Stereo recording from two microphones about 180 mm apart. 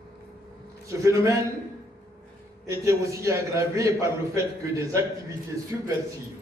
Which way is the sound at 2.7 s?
15° right (ahead or behind).